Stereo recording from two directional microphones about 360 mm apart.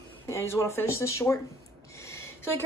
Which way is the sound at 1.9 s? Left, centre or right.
Centre.